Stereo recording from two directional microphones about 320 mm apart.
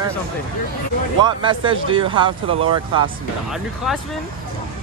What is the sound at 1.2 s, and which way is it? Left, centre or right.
Speech, centre.